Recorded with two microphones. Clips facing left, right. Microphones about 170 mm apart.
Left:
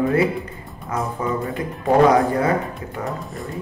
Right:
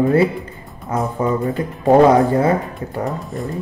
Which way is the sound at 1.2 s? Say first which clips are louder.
Right 5 dB; 35° right (ahead or behind).